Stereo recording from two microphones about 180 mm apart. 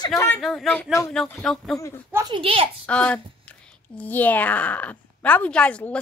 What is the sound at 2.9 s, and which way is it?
A woman's voice, 5° left (ahead or behind).